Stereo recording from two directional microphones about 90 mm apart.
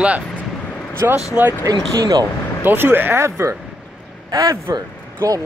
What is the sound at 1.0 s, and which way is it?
Speech, 30° right (ahead or behind).